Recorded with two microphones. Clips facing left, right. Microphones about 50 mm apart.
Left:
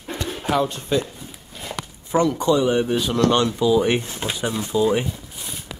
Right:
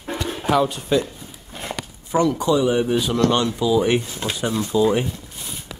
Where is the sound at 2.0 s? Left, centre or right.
Centre.